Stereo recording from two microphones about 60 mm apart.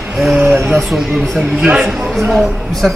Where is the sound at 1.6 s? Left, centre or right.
Centre.